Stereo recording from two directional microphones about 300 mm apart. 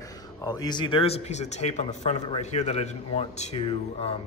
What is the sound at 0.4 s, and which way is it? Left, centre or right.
Speech, centre.